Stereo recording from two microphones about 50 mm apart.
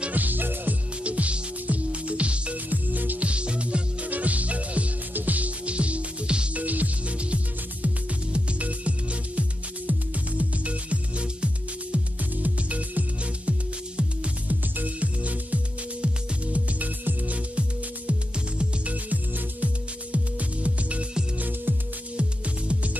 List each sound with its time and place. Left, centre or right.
0.0 s music: right
1.0 s music: right
2.7 s music: right
3.3 s music: right
6.6 s music: right
21.4 s music: right